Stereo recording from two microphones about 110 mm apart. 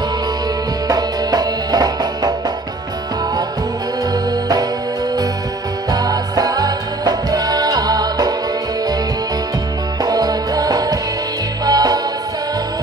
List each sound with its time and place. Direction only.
0.8 s music: 40° right (ahead or behind)
4.1 s music: 35° right (ahead or behind)
5.9 s music: 35° right (ahead or behind)
10.0 s music: 40° right (ahead or behind)